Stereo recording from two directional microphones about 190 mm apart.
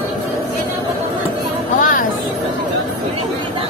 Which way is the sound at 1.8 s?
45° left (ahead or behind).